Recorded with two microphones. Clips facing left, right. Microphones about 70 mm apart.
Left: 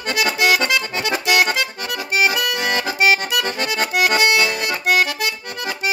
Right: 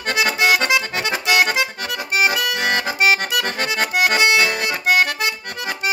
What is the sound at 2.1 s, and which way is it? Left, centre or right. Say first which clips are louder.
Accordion: even; right.